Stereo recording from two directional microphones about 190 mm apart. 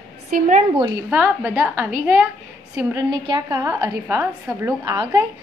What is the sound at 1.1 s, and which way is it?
A woman's voice, 10° right (ahead or behind).